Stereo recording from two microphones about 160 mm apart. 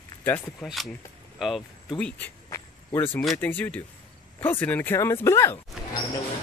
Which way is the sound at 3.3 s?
10° left (ahead or behind).